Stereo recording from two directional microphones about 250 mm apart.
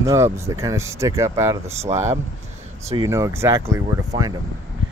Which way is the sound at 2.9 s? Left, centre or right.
Centre.